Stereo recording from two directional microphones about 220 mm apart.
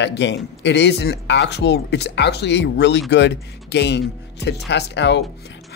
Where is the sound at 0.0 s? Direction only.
55° left (ahead or behind).